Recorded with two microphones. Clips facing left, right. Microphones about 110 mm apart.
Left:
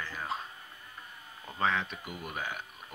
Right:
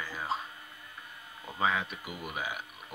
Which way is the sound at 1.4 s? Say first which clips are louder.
Even; 5° right (ahead or behind).